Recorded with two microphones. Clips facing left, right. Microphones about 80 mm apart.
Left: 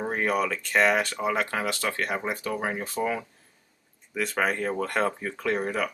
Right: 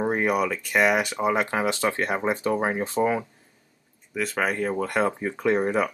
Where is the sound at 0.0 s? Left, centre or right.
Centre.